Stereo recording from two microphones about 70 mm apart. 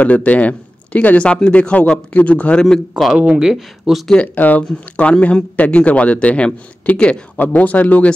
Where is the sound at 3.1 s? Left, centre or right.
Centre.